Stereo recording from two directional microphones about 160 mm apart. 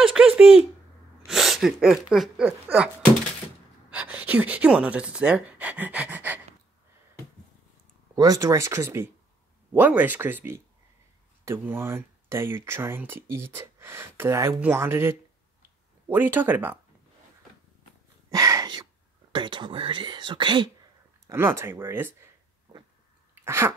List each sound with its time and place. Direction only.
0.0 s a sound: 5° right (ahead or behind)
1.2 s speech: centre (ahead or behind)
3.9 s speech: 10° right (ahead or behind)
8.2 s speech: 20° right (ahead or behind)
18.3 s a sound: 20° right (ahead or behind)
19.3 s speech: 30° right (ahead or behind)
21.3 s speech: 15° right (ahead or behind)
23.4 s sneeze: 15° right (ahead or behind)